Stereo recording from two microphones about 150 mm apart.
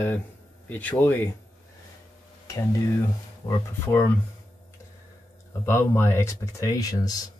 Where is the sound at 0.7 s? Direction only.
10° left (ahead or behind).